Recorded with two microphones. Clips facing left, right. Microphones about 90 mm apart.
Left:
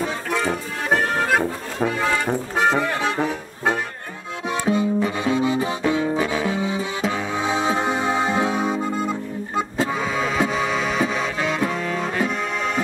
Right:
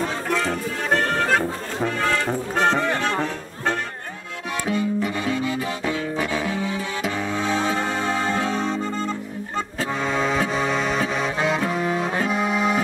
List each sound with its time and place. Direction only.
0.0 s music: 5° left (ahead or behind)
4.6 s music: 20° left (ahead or behind); by 12.8 s 5° right (ahead or behind)